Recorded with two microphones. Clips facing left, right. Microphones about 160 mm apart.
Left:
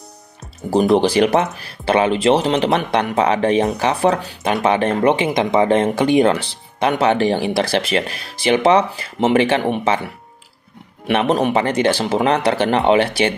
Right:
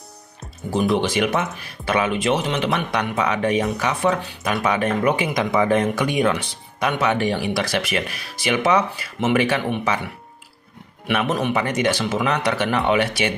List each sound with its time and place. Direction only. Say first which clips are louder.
0.9 s speech: left 6 dB; 35° left (ahead or behind)
11.1 s speech: left 5 dB; 30° left (ahead or behind)